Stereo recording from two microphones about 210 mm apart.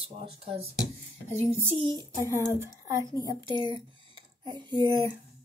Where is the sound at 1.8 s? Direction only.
20° right (ahead or behind).